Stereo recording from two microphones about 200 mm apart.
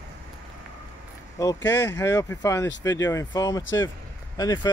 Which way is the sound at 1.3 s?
20° left (ahead or behind).